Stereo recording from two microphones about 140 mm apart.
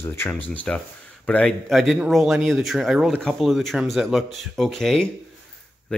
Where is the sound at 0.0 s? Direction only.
20° left (ahead or behind).